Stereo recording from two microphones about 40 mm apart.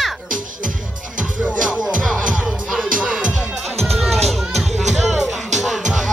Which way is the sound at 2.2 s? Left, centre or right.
Right.